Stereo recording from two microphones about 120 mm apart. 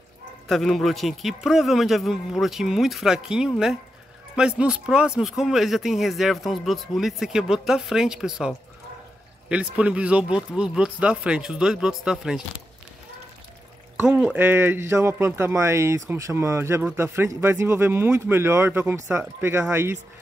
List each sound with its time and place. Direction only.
0.5 s speech: centre (ahead or behind)
14.1 s speech: 15° right (ahead or behind)